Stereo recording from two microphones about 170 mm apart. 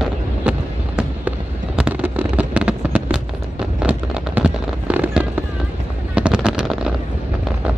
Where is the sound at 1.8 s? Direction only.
10° right (ahead or behind).